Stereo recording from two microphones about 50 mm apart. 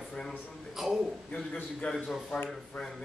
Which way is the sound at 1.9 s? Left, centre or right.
Centre.